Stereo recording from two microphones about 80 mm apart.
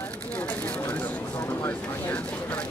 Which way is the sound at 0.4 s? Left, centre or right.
Centre.